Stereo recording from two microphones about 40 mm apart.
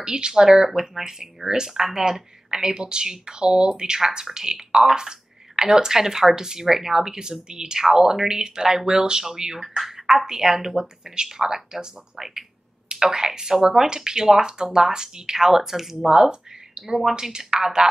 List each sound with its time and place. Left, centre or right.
0.0 s speech: centre
16.8 s speech: centre
17.1 s speech: centre